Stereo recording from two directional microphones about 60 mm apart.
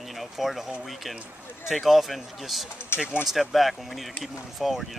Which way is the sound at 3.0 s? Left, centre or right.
Centre.